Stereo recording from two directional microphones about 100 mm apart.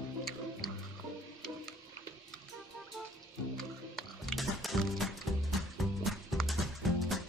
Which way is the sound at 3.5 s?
5° left (ahead or behind).